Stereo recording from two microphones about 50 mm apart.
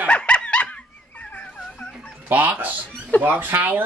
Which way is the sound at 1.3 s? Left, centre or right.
Left.